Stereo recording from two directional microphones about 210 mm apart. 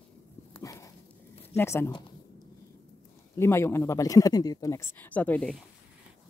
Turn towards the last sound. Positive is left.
turn(degrees=5)  # may be behind; listen again after turning